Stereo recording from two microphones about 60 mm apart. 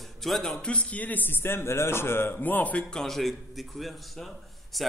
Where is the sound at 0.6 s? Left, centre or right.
Left.